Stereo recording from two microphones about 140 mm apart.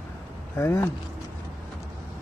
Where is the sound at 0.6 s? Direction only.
20° left (ahead or behind).